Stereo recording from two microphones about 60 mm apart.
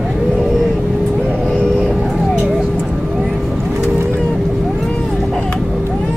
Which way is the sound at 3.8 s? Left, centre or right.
Right.